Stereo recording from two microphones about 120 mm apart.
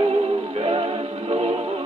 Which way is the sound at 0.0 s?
50° right (ahead or behind).